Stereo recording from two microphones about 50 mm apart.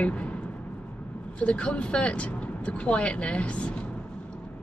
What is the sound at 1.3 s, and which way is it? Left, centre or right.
A woman's voice, left.